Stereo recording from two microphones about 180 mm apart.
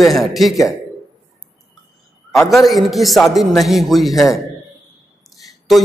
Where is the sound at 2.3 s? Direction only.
Centre (ahead or behind).